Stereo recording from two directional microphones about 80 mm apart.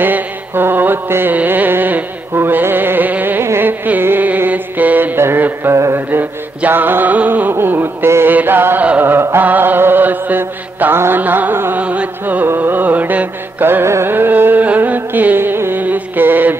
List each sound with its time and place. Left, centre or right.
0.0 s carnatic music: right
3.4 s music: right
6.0 s music: right
8.4 s chant: right
12.4 s music: right